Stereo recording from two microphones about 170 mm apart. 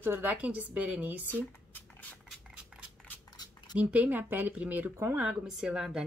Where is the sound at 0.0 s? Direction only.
10° right (ahead or behind).